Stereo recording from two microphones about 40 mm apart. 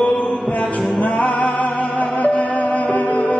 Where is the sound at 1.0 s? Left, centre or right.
Left.